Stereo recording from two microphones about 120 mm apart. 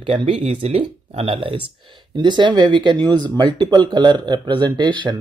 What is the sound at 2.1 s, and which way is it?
Speech, 40° right (ahead or behind).